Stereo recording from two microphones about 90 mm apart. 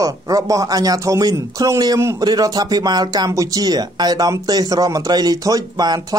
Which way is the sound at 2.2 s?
50° right (ahead or behind).